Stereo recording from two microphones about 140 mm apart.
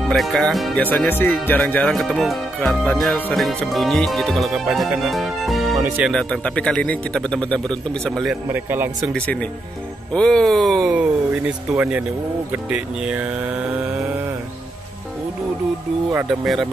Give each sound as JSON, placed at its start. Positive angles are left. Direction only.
{"t": 0.1, "sound": "speech", "side_deg": 0}
{"t": 0.8, "sound": "speech", "side_deg": 15}
{"t": 5.8, "sound": "speech", "side_deg": -15}
{"t": 6.0, "sound": "speech", "side_deg": 5}
{"t": 8.5, "sound": "speech", "side_deg": -15}
{"t": 9.1, "sound": "speech", "side_deg": 10}
{"t": 16.1, "sound": "speech", "side_deg": 0}